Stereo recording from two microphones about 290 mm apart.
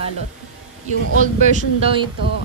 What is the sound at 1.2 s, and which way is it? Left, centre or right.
Speech, right.